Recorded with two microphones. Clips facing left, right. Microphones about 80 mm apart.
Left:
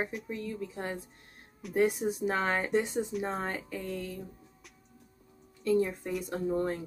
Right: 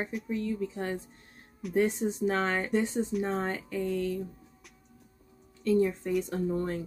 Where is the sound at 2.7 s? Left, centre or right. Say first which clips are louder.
Right 1 dB; centre.